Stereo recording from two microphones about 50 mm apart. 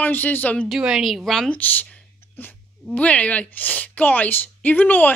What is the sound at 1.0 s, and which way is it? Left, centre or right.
Speech, centre.